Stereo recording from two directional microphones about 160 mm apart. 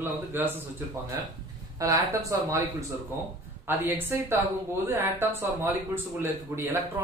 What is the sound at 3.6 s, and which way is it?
Speech, 10° right (ahead or behind).